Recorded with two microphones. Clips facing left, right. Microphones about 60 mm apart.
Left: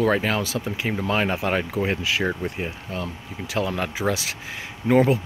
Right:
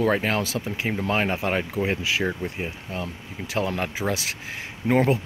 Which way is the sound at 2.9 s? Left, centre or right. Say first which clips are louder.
Left 1 dB; right.